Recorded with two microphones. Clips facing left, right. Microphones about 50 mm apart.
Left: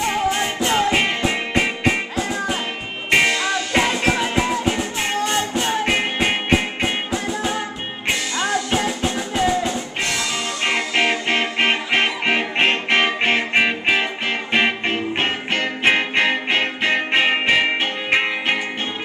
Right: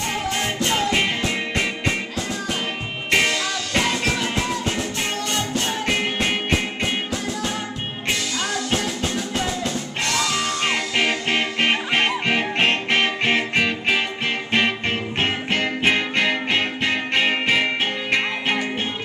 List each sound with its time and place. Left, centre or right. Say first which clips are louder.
0.1 s music: left 4 dB; centre
9.0 s music: left 4 dB; centre